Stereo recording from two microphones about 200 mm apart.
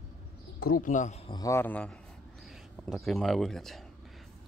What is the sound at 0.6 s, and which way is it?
A man's voice, 45° left (ahead or behind).